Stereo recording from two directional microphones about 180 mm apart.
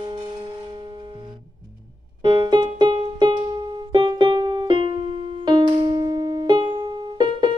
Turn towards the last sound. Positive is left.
turn(degrees=-25)  # may be behind; listen again after turning